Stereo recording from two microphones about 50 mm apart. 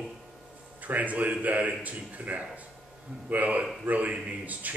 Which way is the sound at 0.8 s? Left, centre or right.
Right.